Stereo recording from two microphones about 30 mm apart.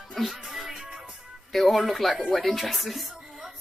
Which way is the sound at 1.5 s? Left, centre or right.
Centre.